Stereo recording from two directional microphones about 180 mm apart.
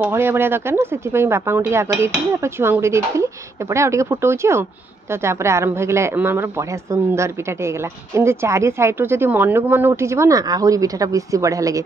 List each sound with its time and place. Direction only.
0.0 s a woman's voice: 15° right (ahead or behind)